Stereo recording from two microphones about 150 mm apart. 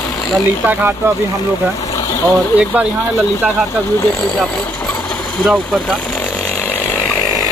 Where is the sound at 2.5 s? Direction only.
10° right (ahead or behind).